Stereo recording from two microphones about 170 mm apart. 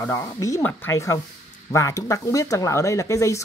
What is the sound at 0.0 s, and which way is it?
Speech, 15° left (ahead or behind).